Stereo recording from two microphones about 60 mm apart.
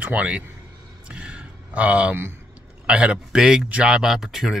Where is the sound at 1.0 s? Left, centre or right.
Centre.